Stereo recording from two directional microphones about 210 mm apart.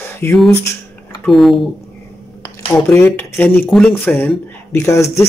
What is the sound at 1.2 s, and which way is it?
Speech, centre (ahead or behind).